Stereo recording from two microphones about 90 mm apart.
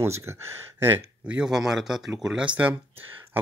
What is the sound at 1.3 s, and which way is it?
Speech, 5° right (ahead or behind).